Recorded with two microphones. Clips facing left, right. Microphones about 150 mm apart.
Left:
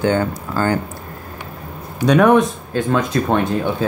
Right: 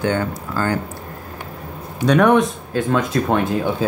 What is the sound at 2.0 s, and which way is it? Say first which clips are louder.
Speech: left 2 dB; 5° left (ahead or behind).